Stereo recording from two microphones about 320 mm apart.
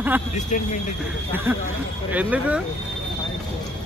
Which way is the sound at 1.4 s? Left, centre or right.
Centre.